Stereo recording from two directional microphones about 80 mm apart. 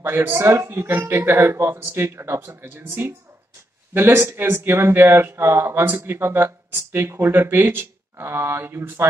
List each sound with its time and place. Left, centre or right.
0.0 s speech: right